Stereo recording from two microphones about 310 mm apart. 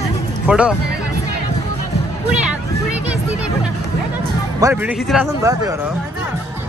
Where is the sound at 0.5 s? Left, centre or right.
Centre.